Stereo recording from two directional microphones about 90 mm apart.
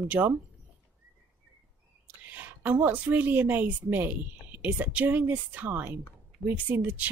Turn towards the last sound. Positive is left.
turn(degrees=-15)  # may be behind; listen again after turning